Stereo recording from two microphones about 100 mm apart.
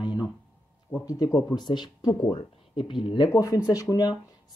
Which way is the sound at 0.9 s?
35° left (ahead or behind).